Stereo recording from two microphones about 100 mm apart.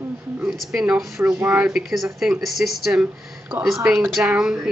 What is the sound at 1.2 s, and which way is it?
Speech, 25° right (ahead or behind).